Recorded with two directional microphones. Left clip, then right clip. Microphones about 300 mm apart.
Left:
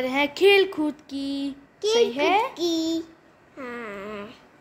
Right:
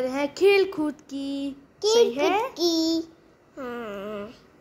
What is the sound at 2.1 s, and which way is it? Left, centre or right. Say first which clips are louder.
Speech: left 2 dB; centre.